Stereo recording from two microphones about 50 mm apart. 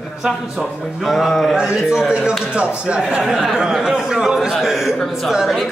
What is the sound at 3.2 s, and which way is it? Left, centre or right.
A man's voice, centre.